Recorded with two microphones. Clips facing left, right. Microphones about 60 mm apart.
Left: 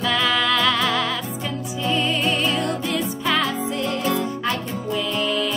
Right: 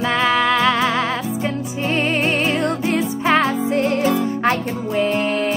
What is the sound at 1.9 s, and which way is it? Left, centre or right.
Music, right.